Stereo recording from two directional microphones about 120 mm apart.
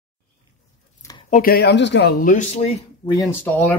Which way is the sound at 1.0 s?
25° left (ahead or behind).